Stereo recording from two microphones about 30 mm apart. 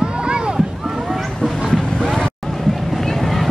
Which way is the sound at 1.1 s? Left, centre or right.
Centre.